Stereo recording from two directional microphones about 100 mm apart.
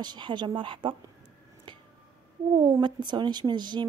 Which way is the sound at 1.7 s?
55° right (ahead or behind).